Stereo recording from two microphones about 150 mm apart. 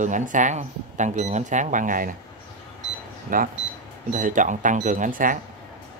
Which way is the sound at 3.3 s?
70° right (ahead or behind).